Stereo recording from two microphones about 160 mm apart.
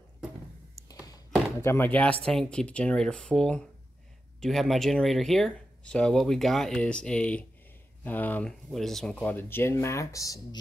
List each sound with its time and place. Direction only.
0.8 s thunk: 20° left (ahead or behind)
1.6 s speech: 15° left (ahead or behind)